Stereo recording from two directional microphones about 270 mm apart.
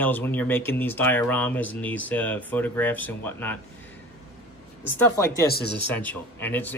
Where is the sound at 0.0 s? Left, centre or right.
Centre.